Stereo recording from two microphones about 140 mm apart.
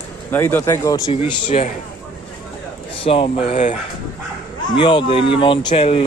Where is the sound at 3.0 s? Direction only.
40° left (ahead or behind).